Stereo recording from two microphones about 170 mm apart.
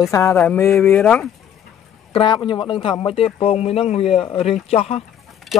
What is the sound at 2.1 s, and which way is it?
Speech, 30° left (ahead or behind).